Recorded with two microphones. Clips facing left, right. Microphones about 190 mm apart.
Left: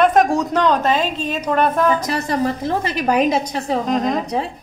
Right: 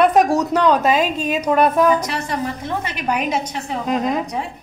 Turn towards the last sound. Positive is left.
turn(degrees=-5)  # may be behind; listen again after turning